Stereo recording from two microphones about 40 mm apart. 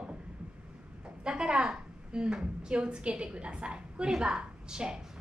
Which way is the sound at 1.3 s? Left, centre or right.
Right.